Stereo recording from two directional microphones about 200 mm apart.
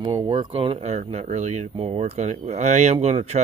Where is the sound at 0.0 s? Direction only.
25° right (ahead or behind).